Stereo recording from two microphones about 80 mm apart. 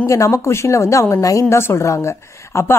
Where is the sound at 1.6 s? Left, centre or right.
Left.